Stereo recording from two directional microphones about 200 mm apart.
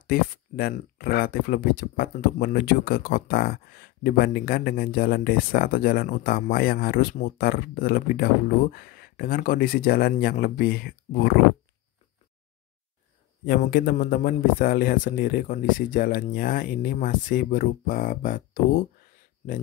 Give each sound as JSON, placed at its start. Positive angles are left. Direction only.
{"t": 0.0, "sound": "speech", "side_deg": 50}
{"t": 13.5, "sound": "speech", "side_deg": 50}